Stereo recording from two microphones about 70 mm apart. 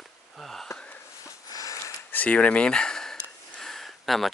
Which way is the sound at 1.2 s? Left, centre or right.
Left.